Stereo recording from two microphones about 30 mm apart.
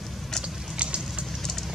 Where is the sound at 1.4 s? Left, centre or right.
Centre.